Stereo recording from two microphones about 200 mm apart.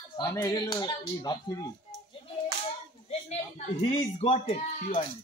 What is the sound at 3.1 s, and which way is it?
Speech, 30° left (ahead or behind).